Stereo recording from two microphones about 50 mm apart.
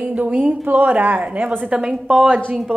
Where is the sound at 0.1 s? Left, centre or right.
Right.